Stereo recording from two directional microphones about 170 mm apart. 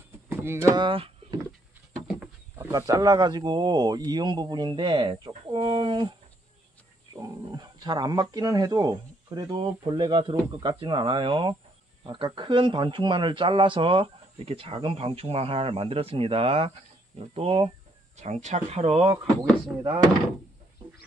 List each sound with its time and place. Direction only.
0.3 s a sound: 15° right (ahead or behind)
0.7 s speech: 30° right (ahead or behind)
2.0 s wild animals: 10° right (ahead or behind)
2.7 s speech: 20° right (ahead or behind)
7.2 s speech: 25° right (ahead or behind)